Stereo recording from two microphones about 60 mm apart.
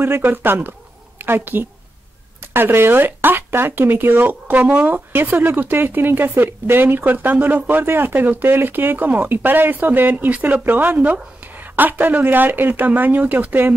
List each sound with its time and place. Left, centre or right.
0.0 s speech: right